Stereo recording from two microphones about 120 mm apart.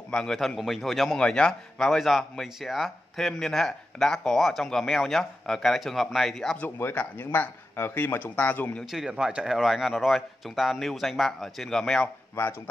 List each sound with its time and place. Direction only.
0.1 s a man's voice: 5° left (ahead or behind)
6.8 s speech: 15° left (ahead or behind)
8.9 s a man's voice: 5° right (ahead or behind)
12.4 s speech: 20° left (ahead or behind)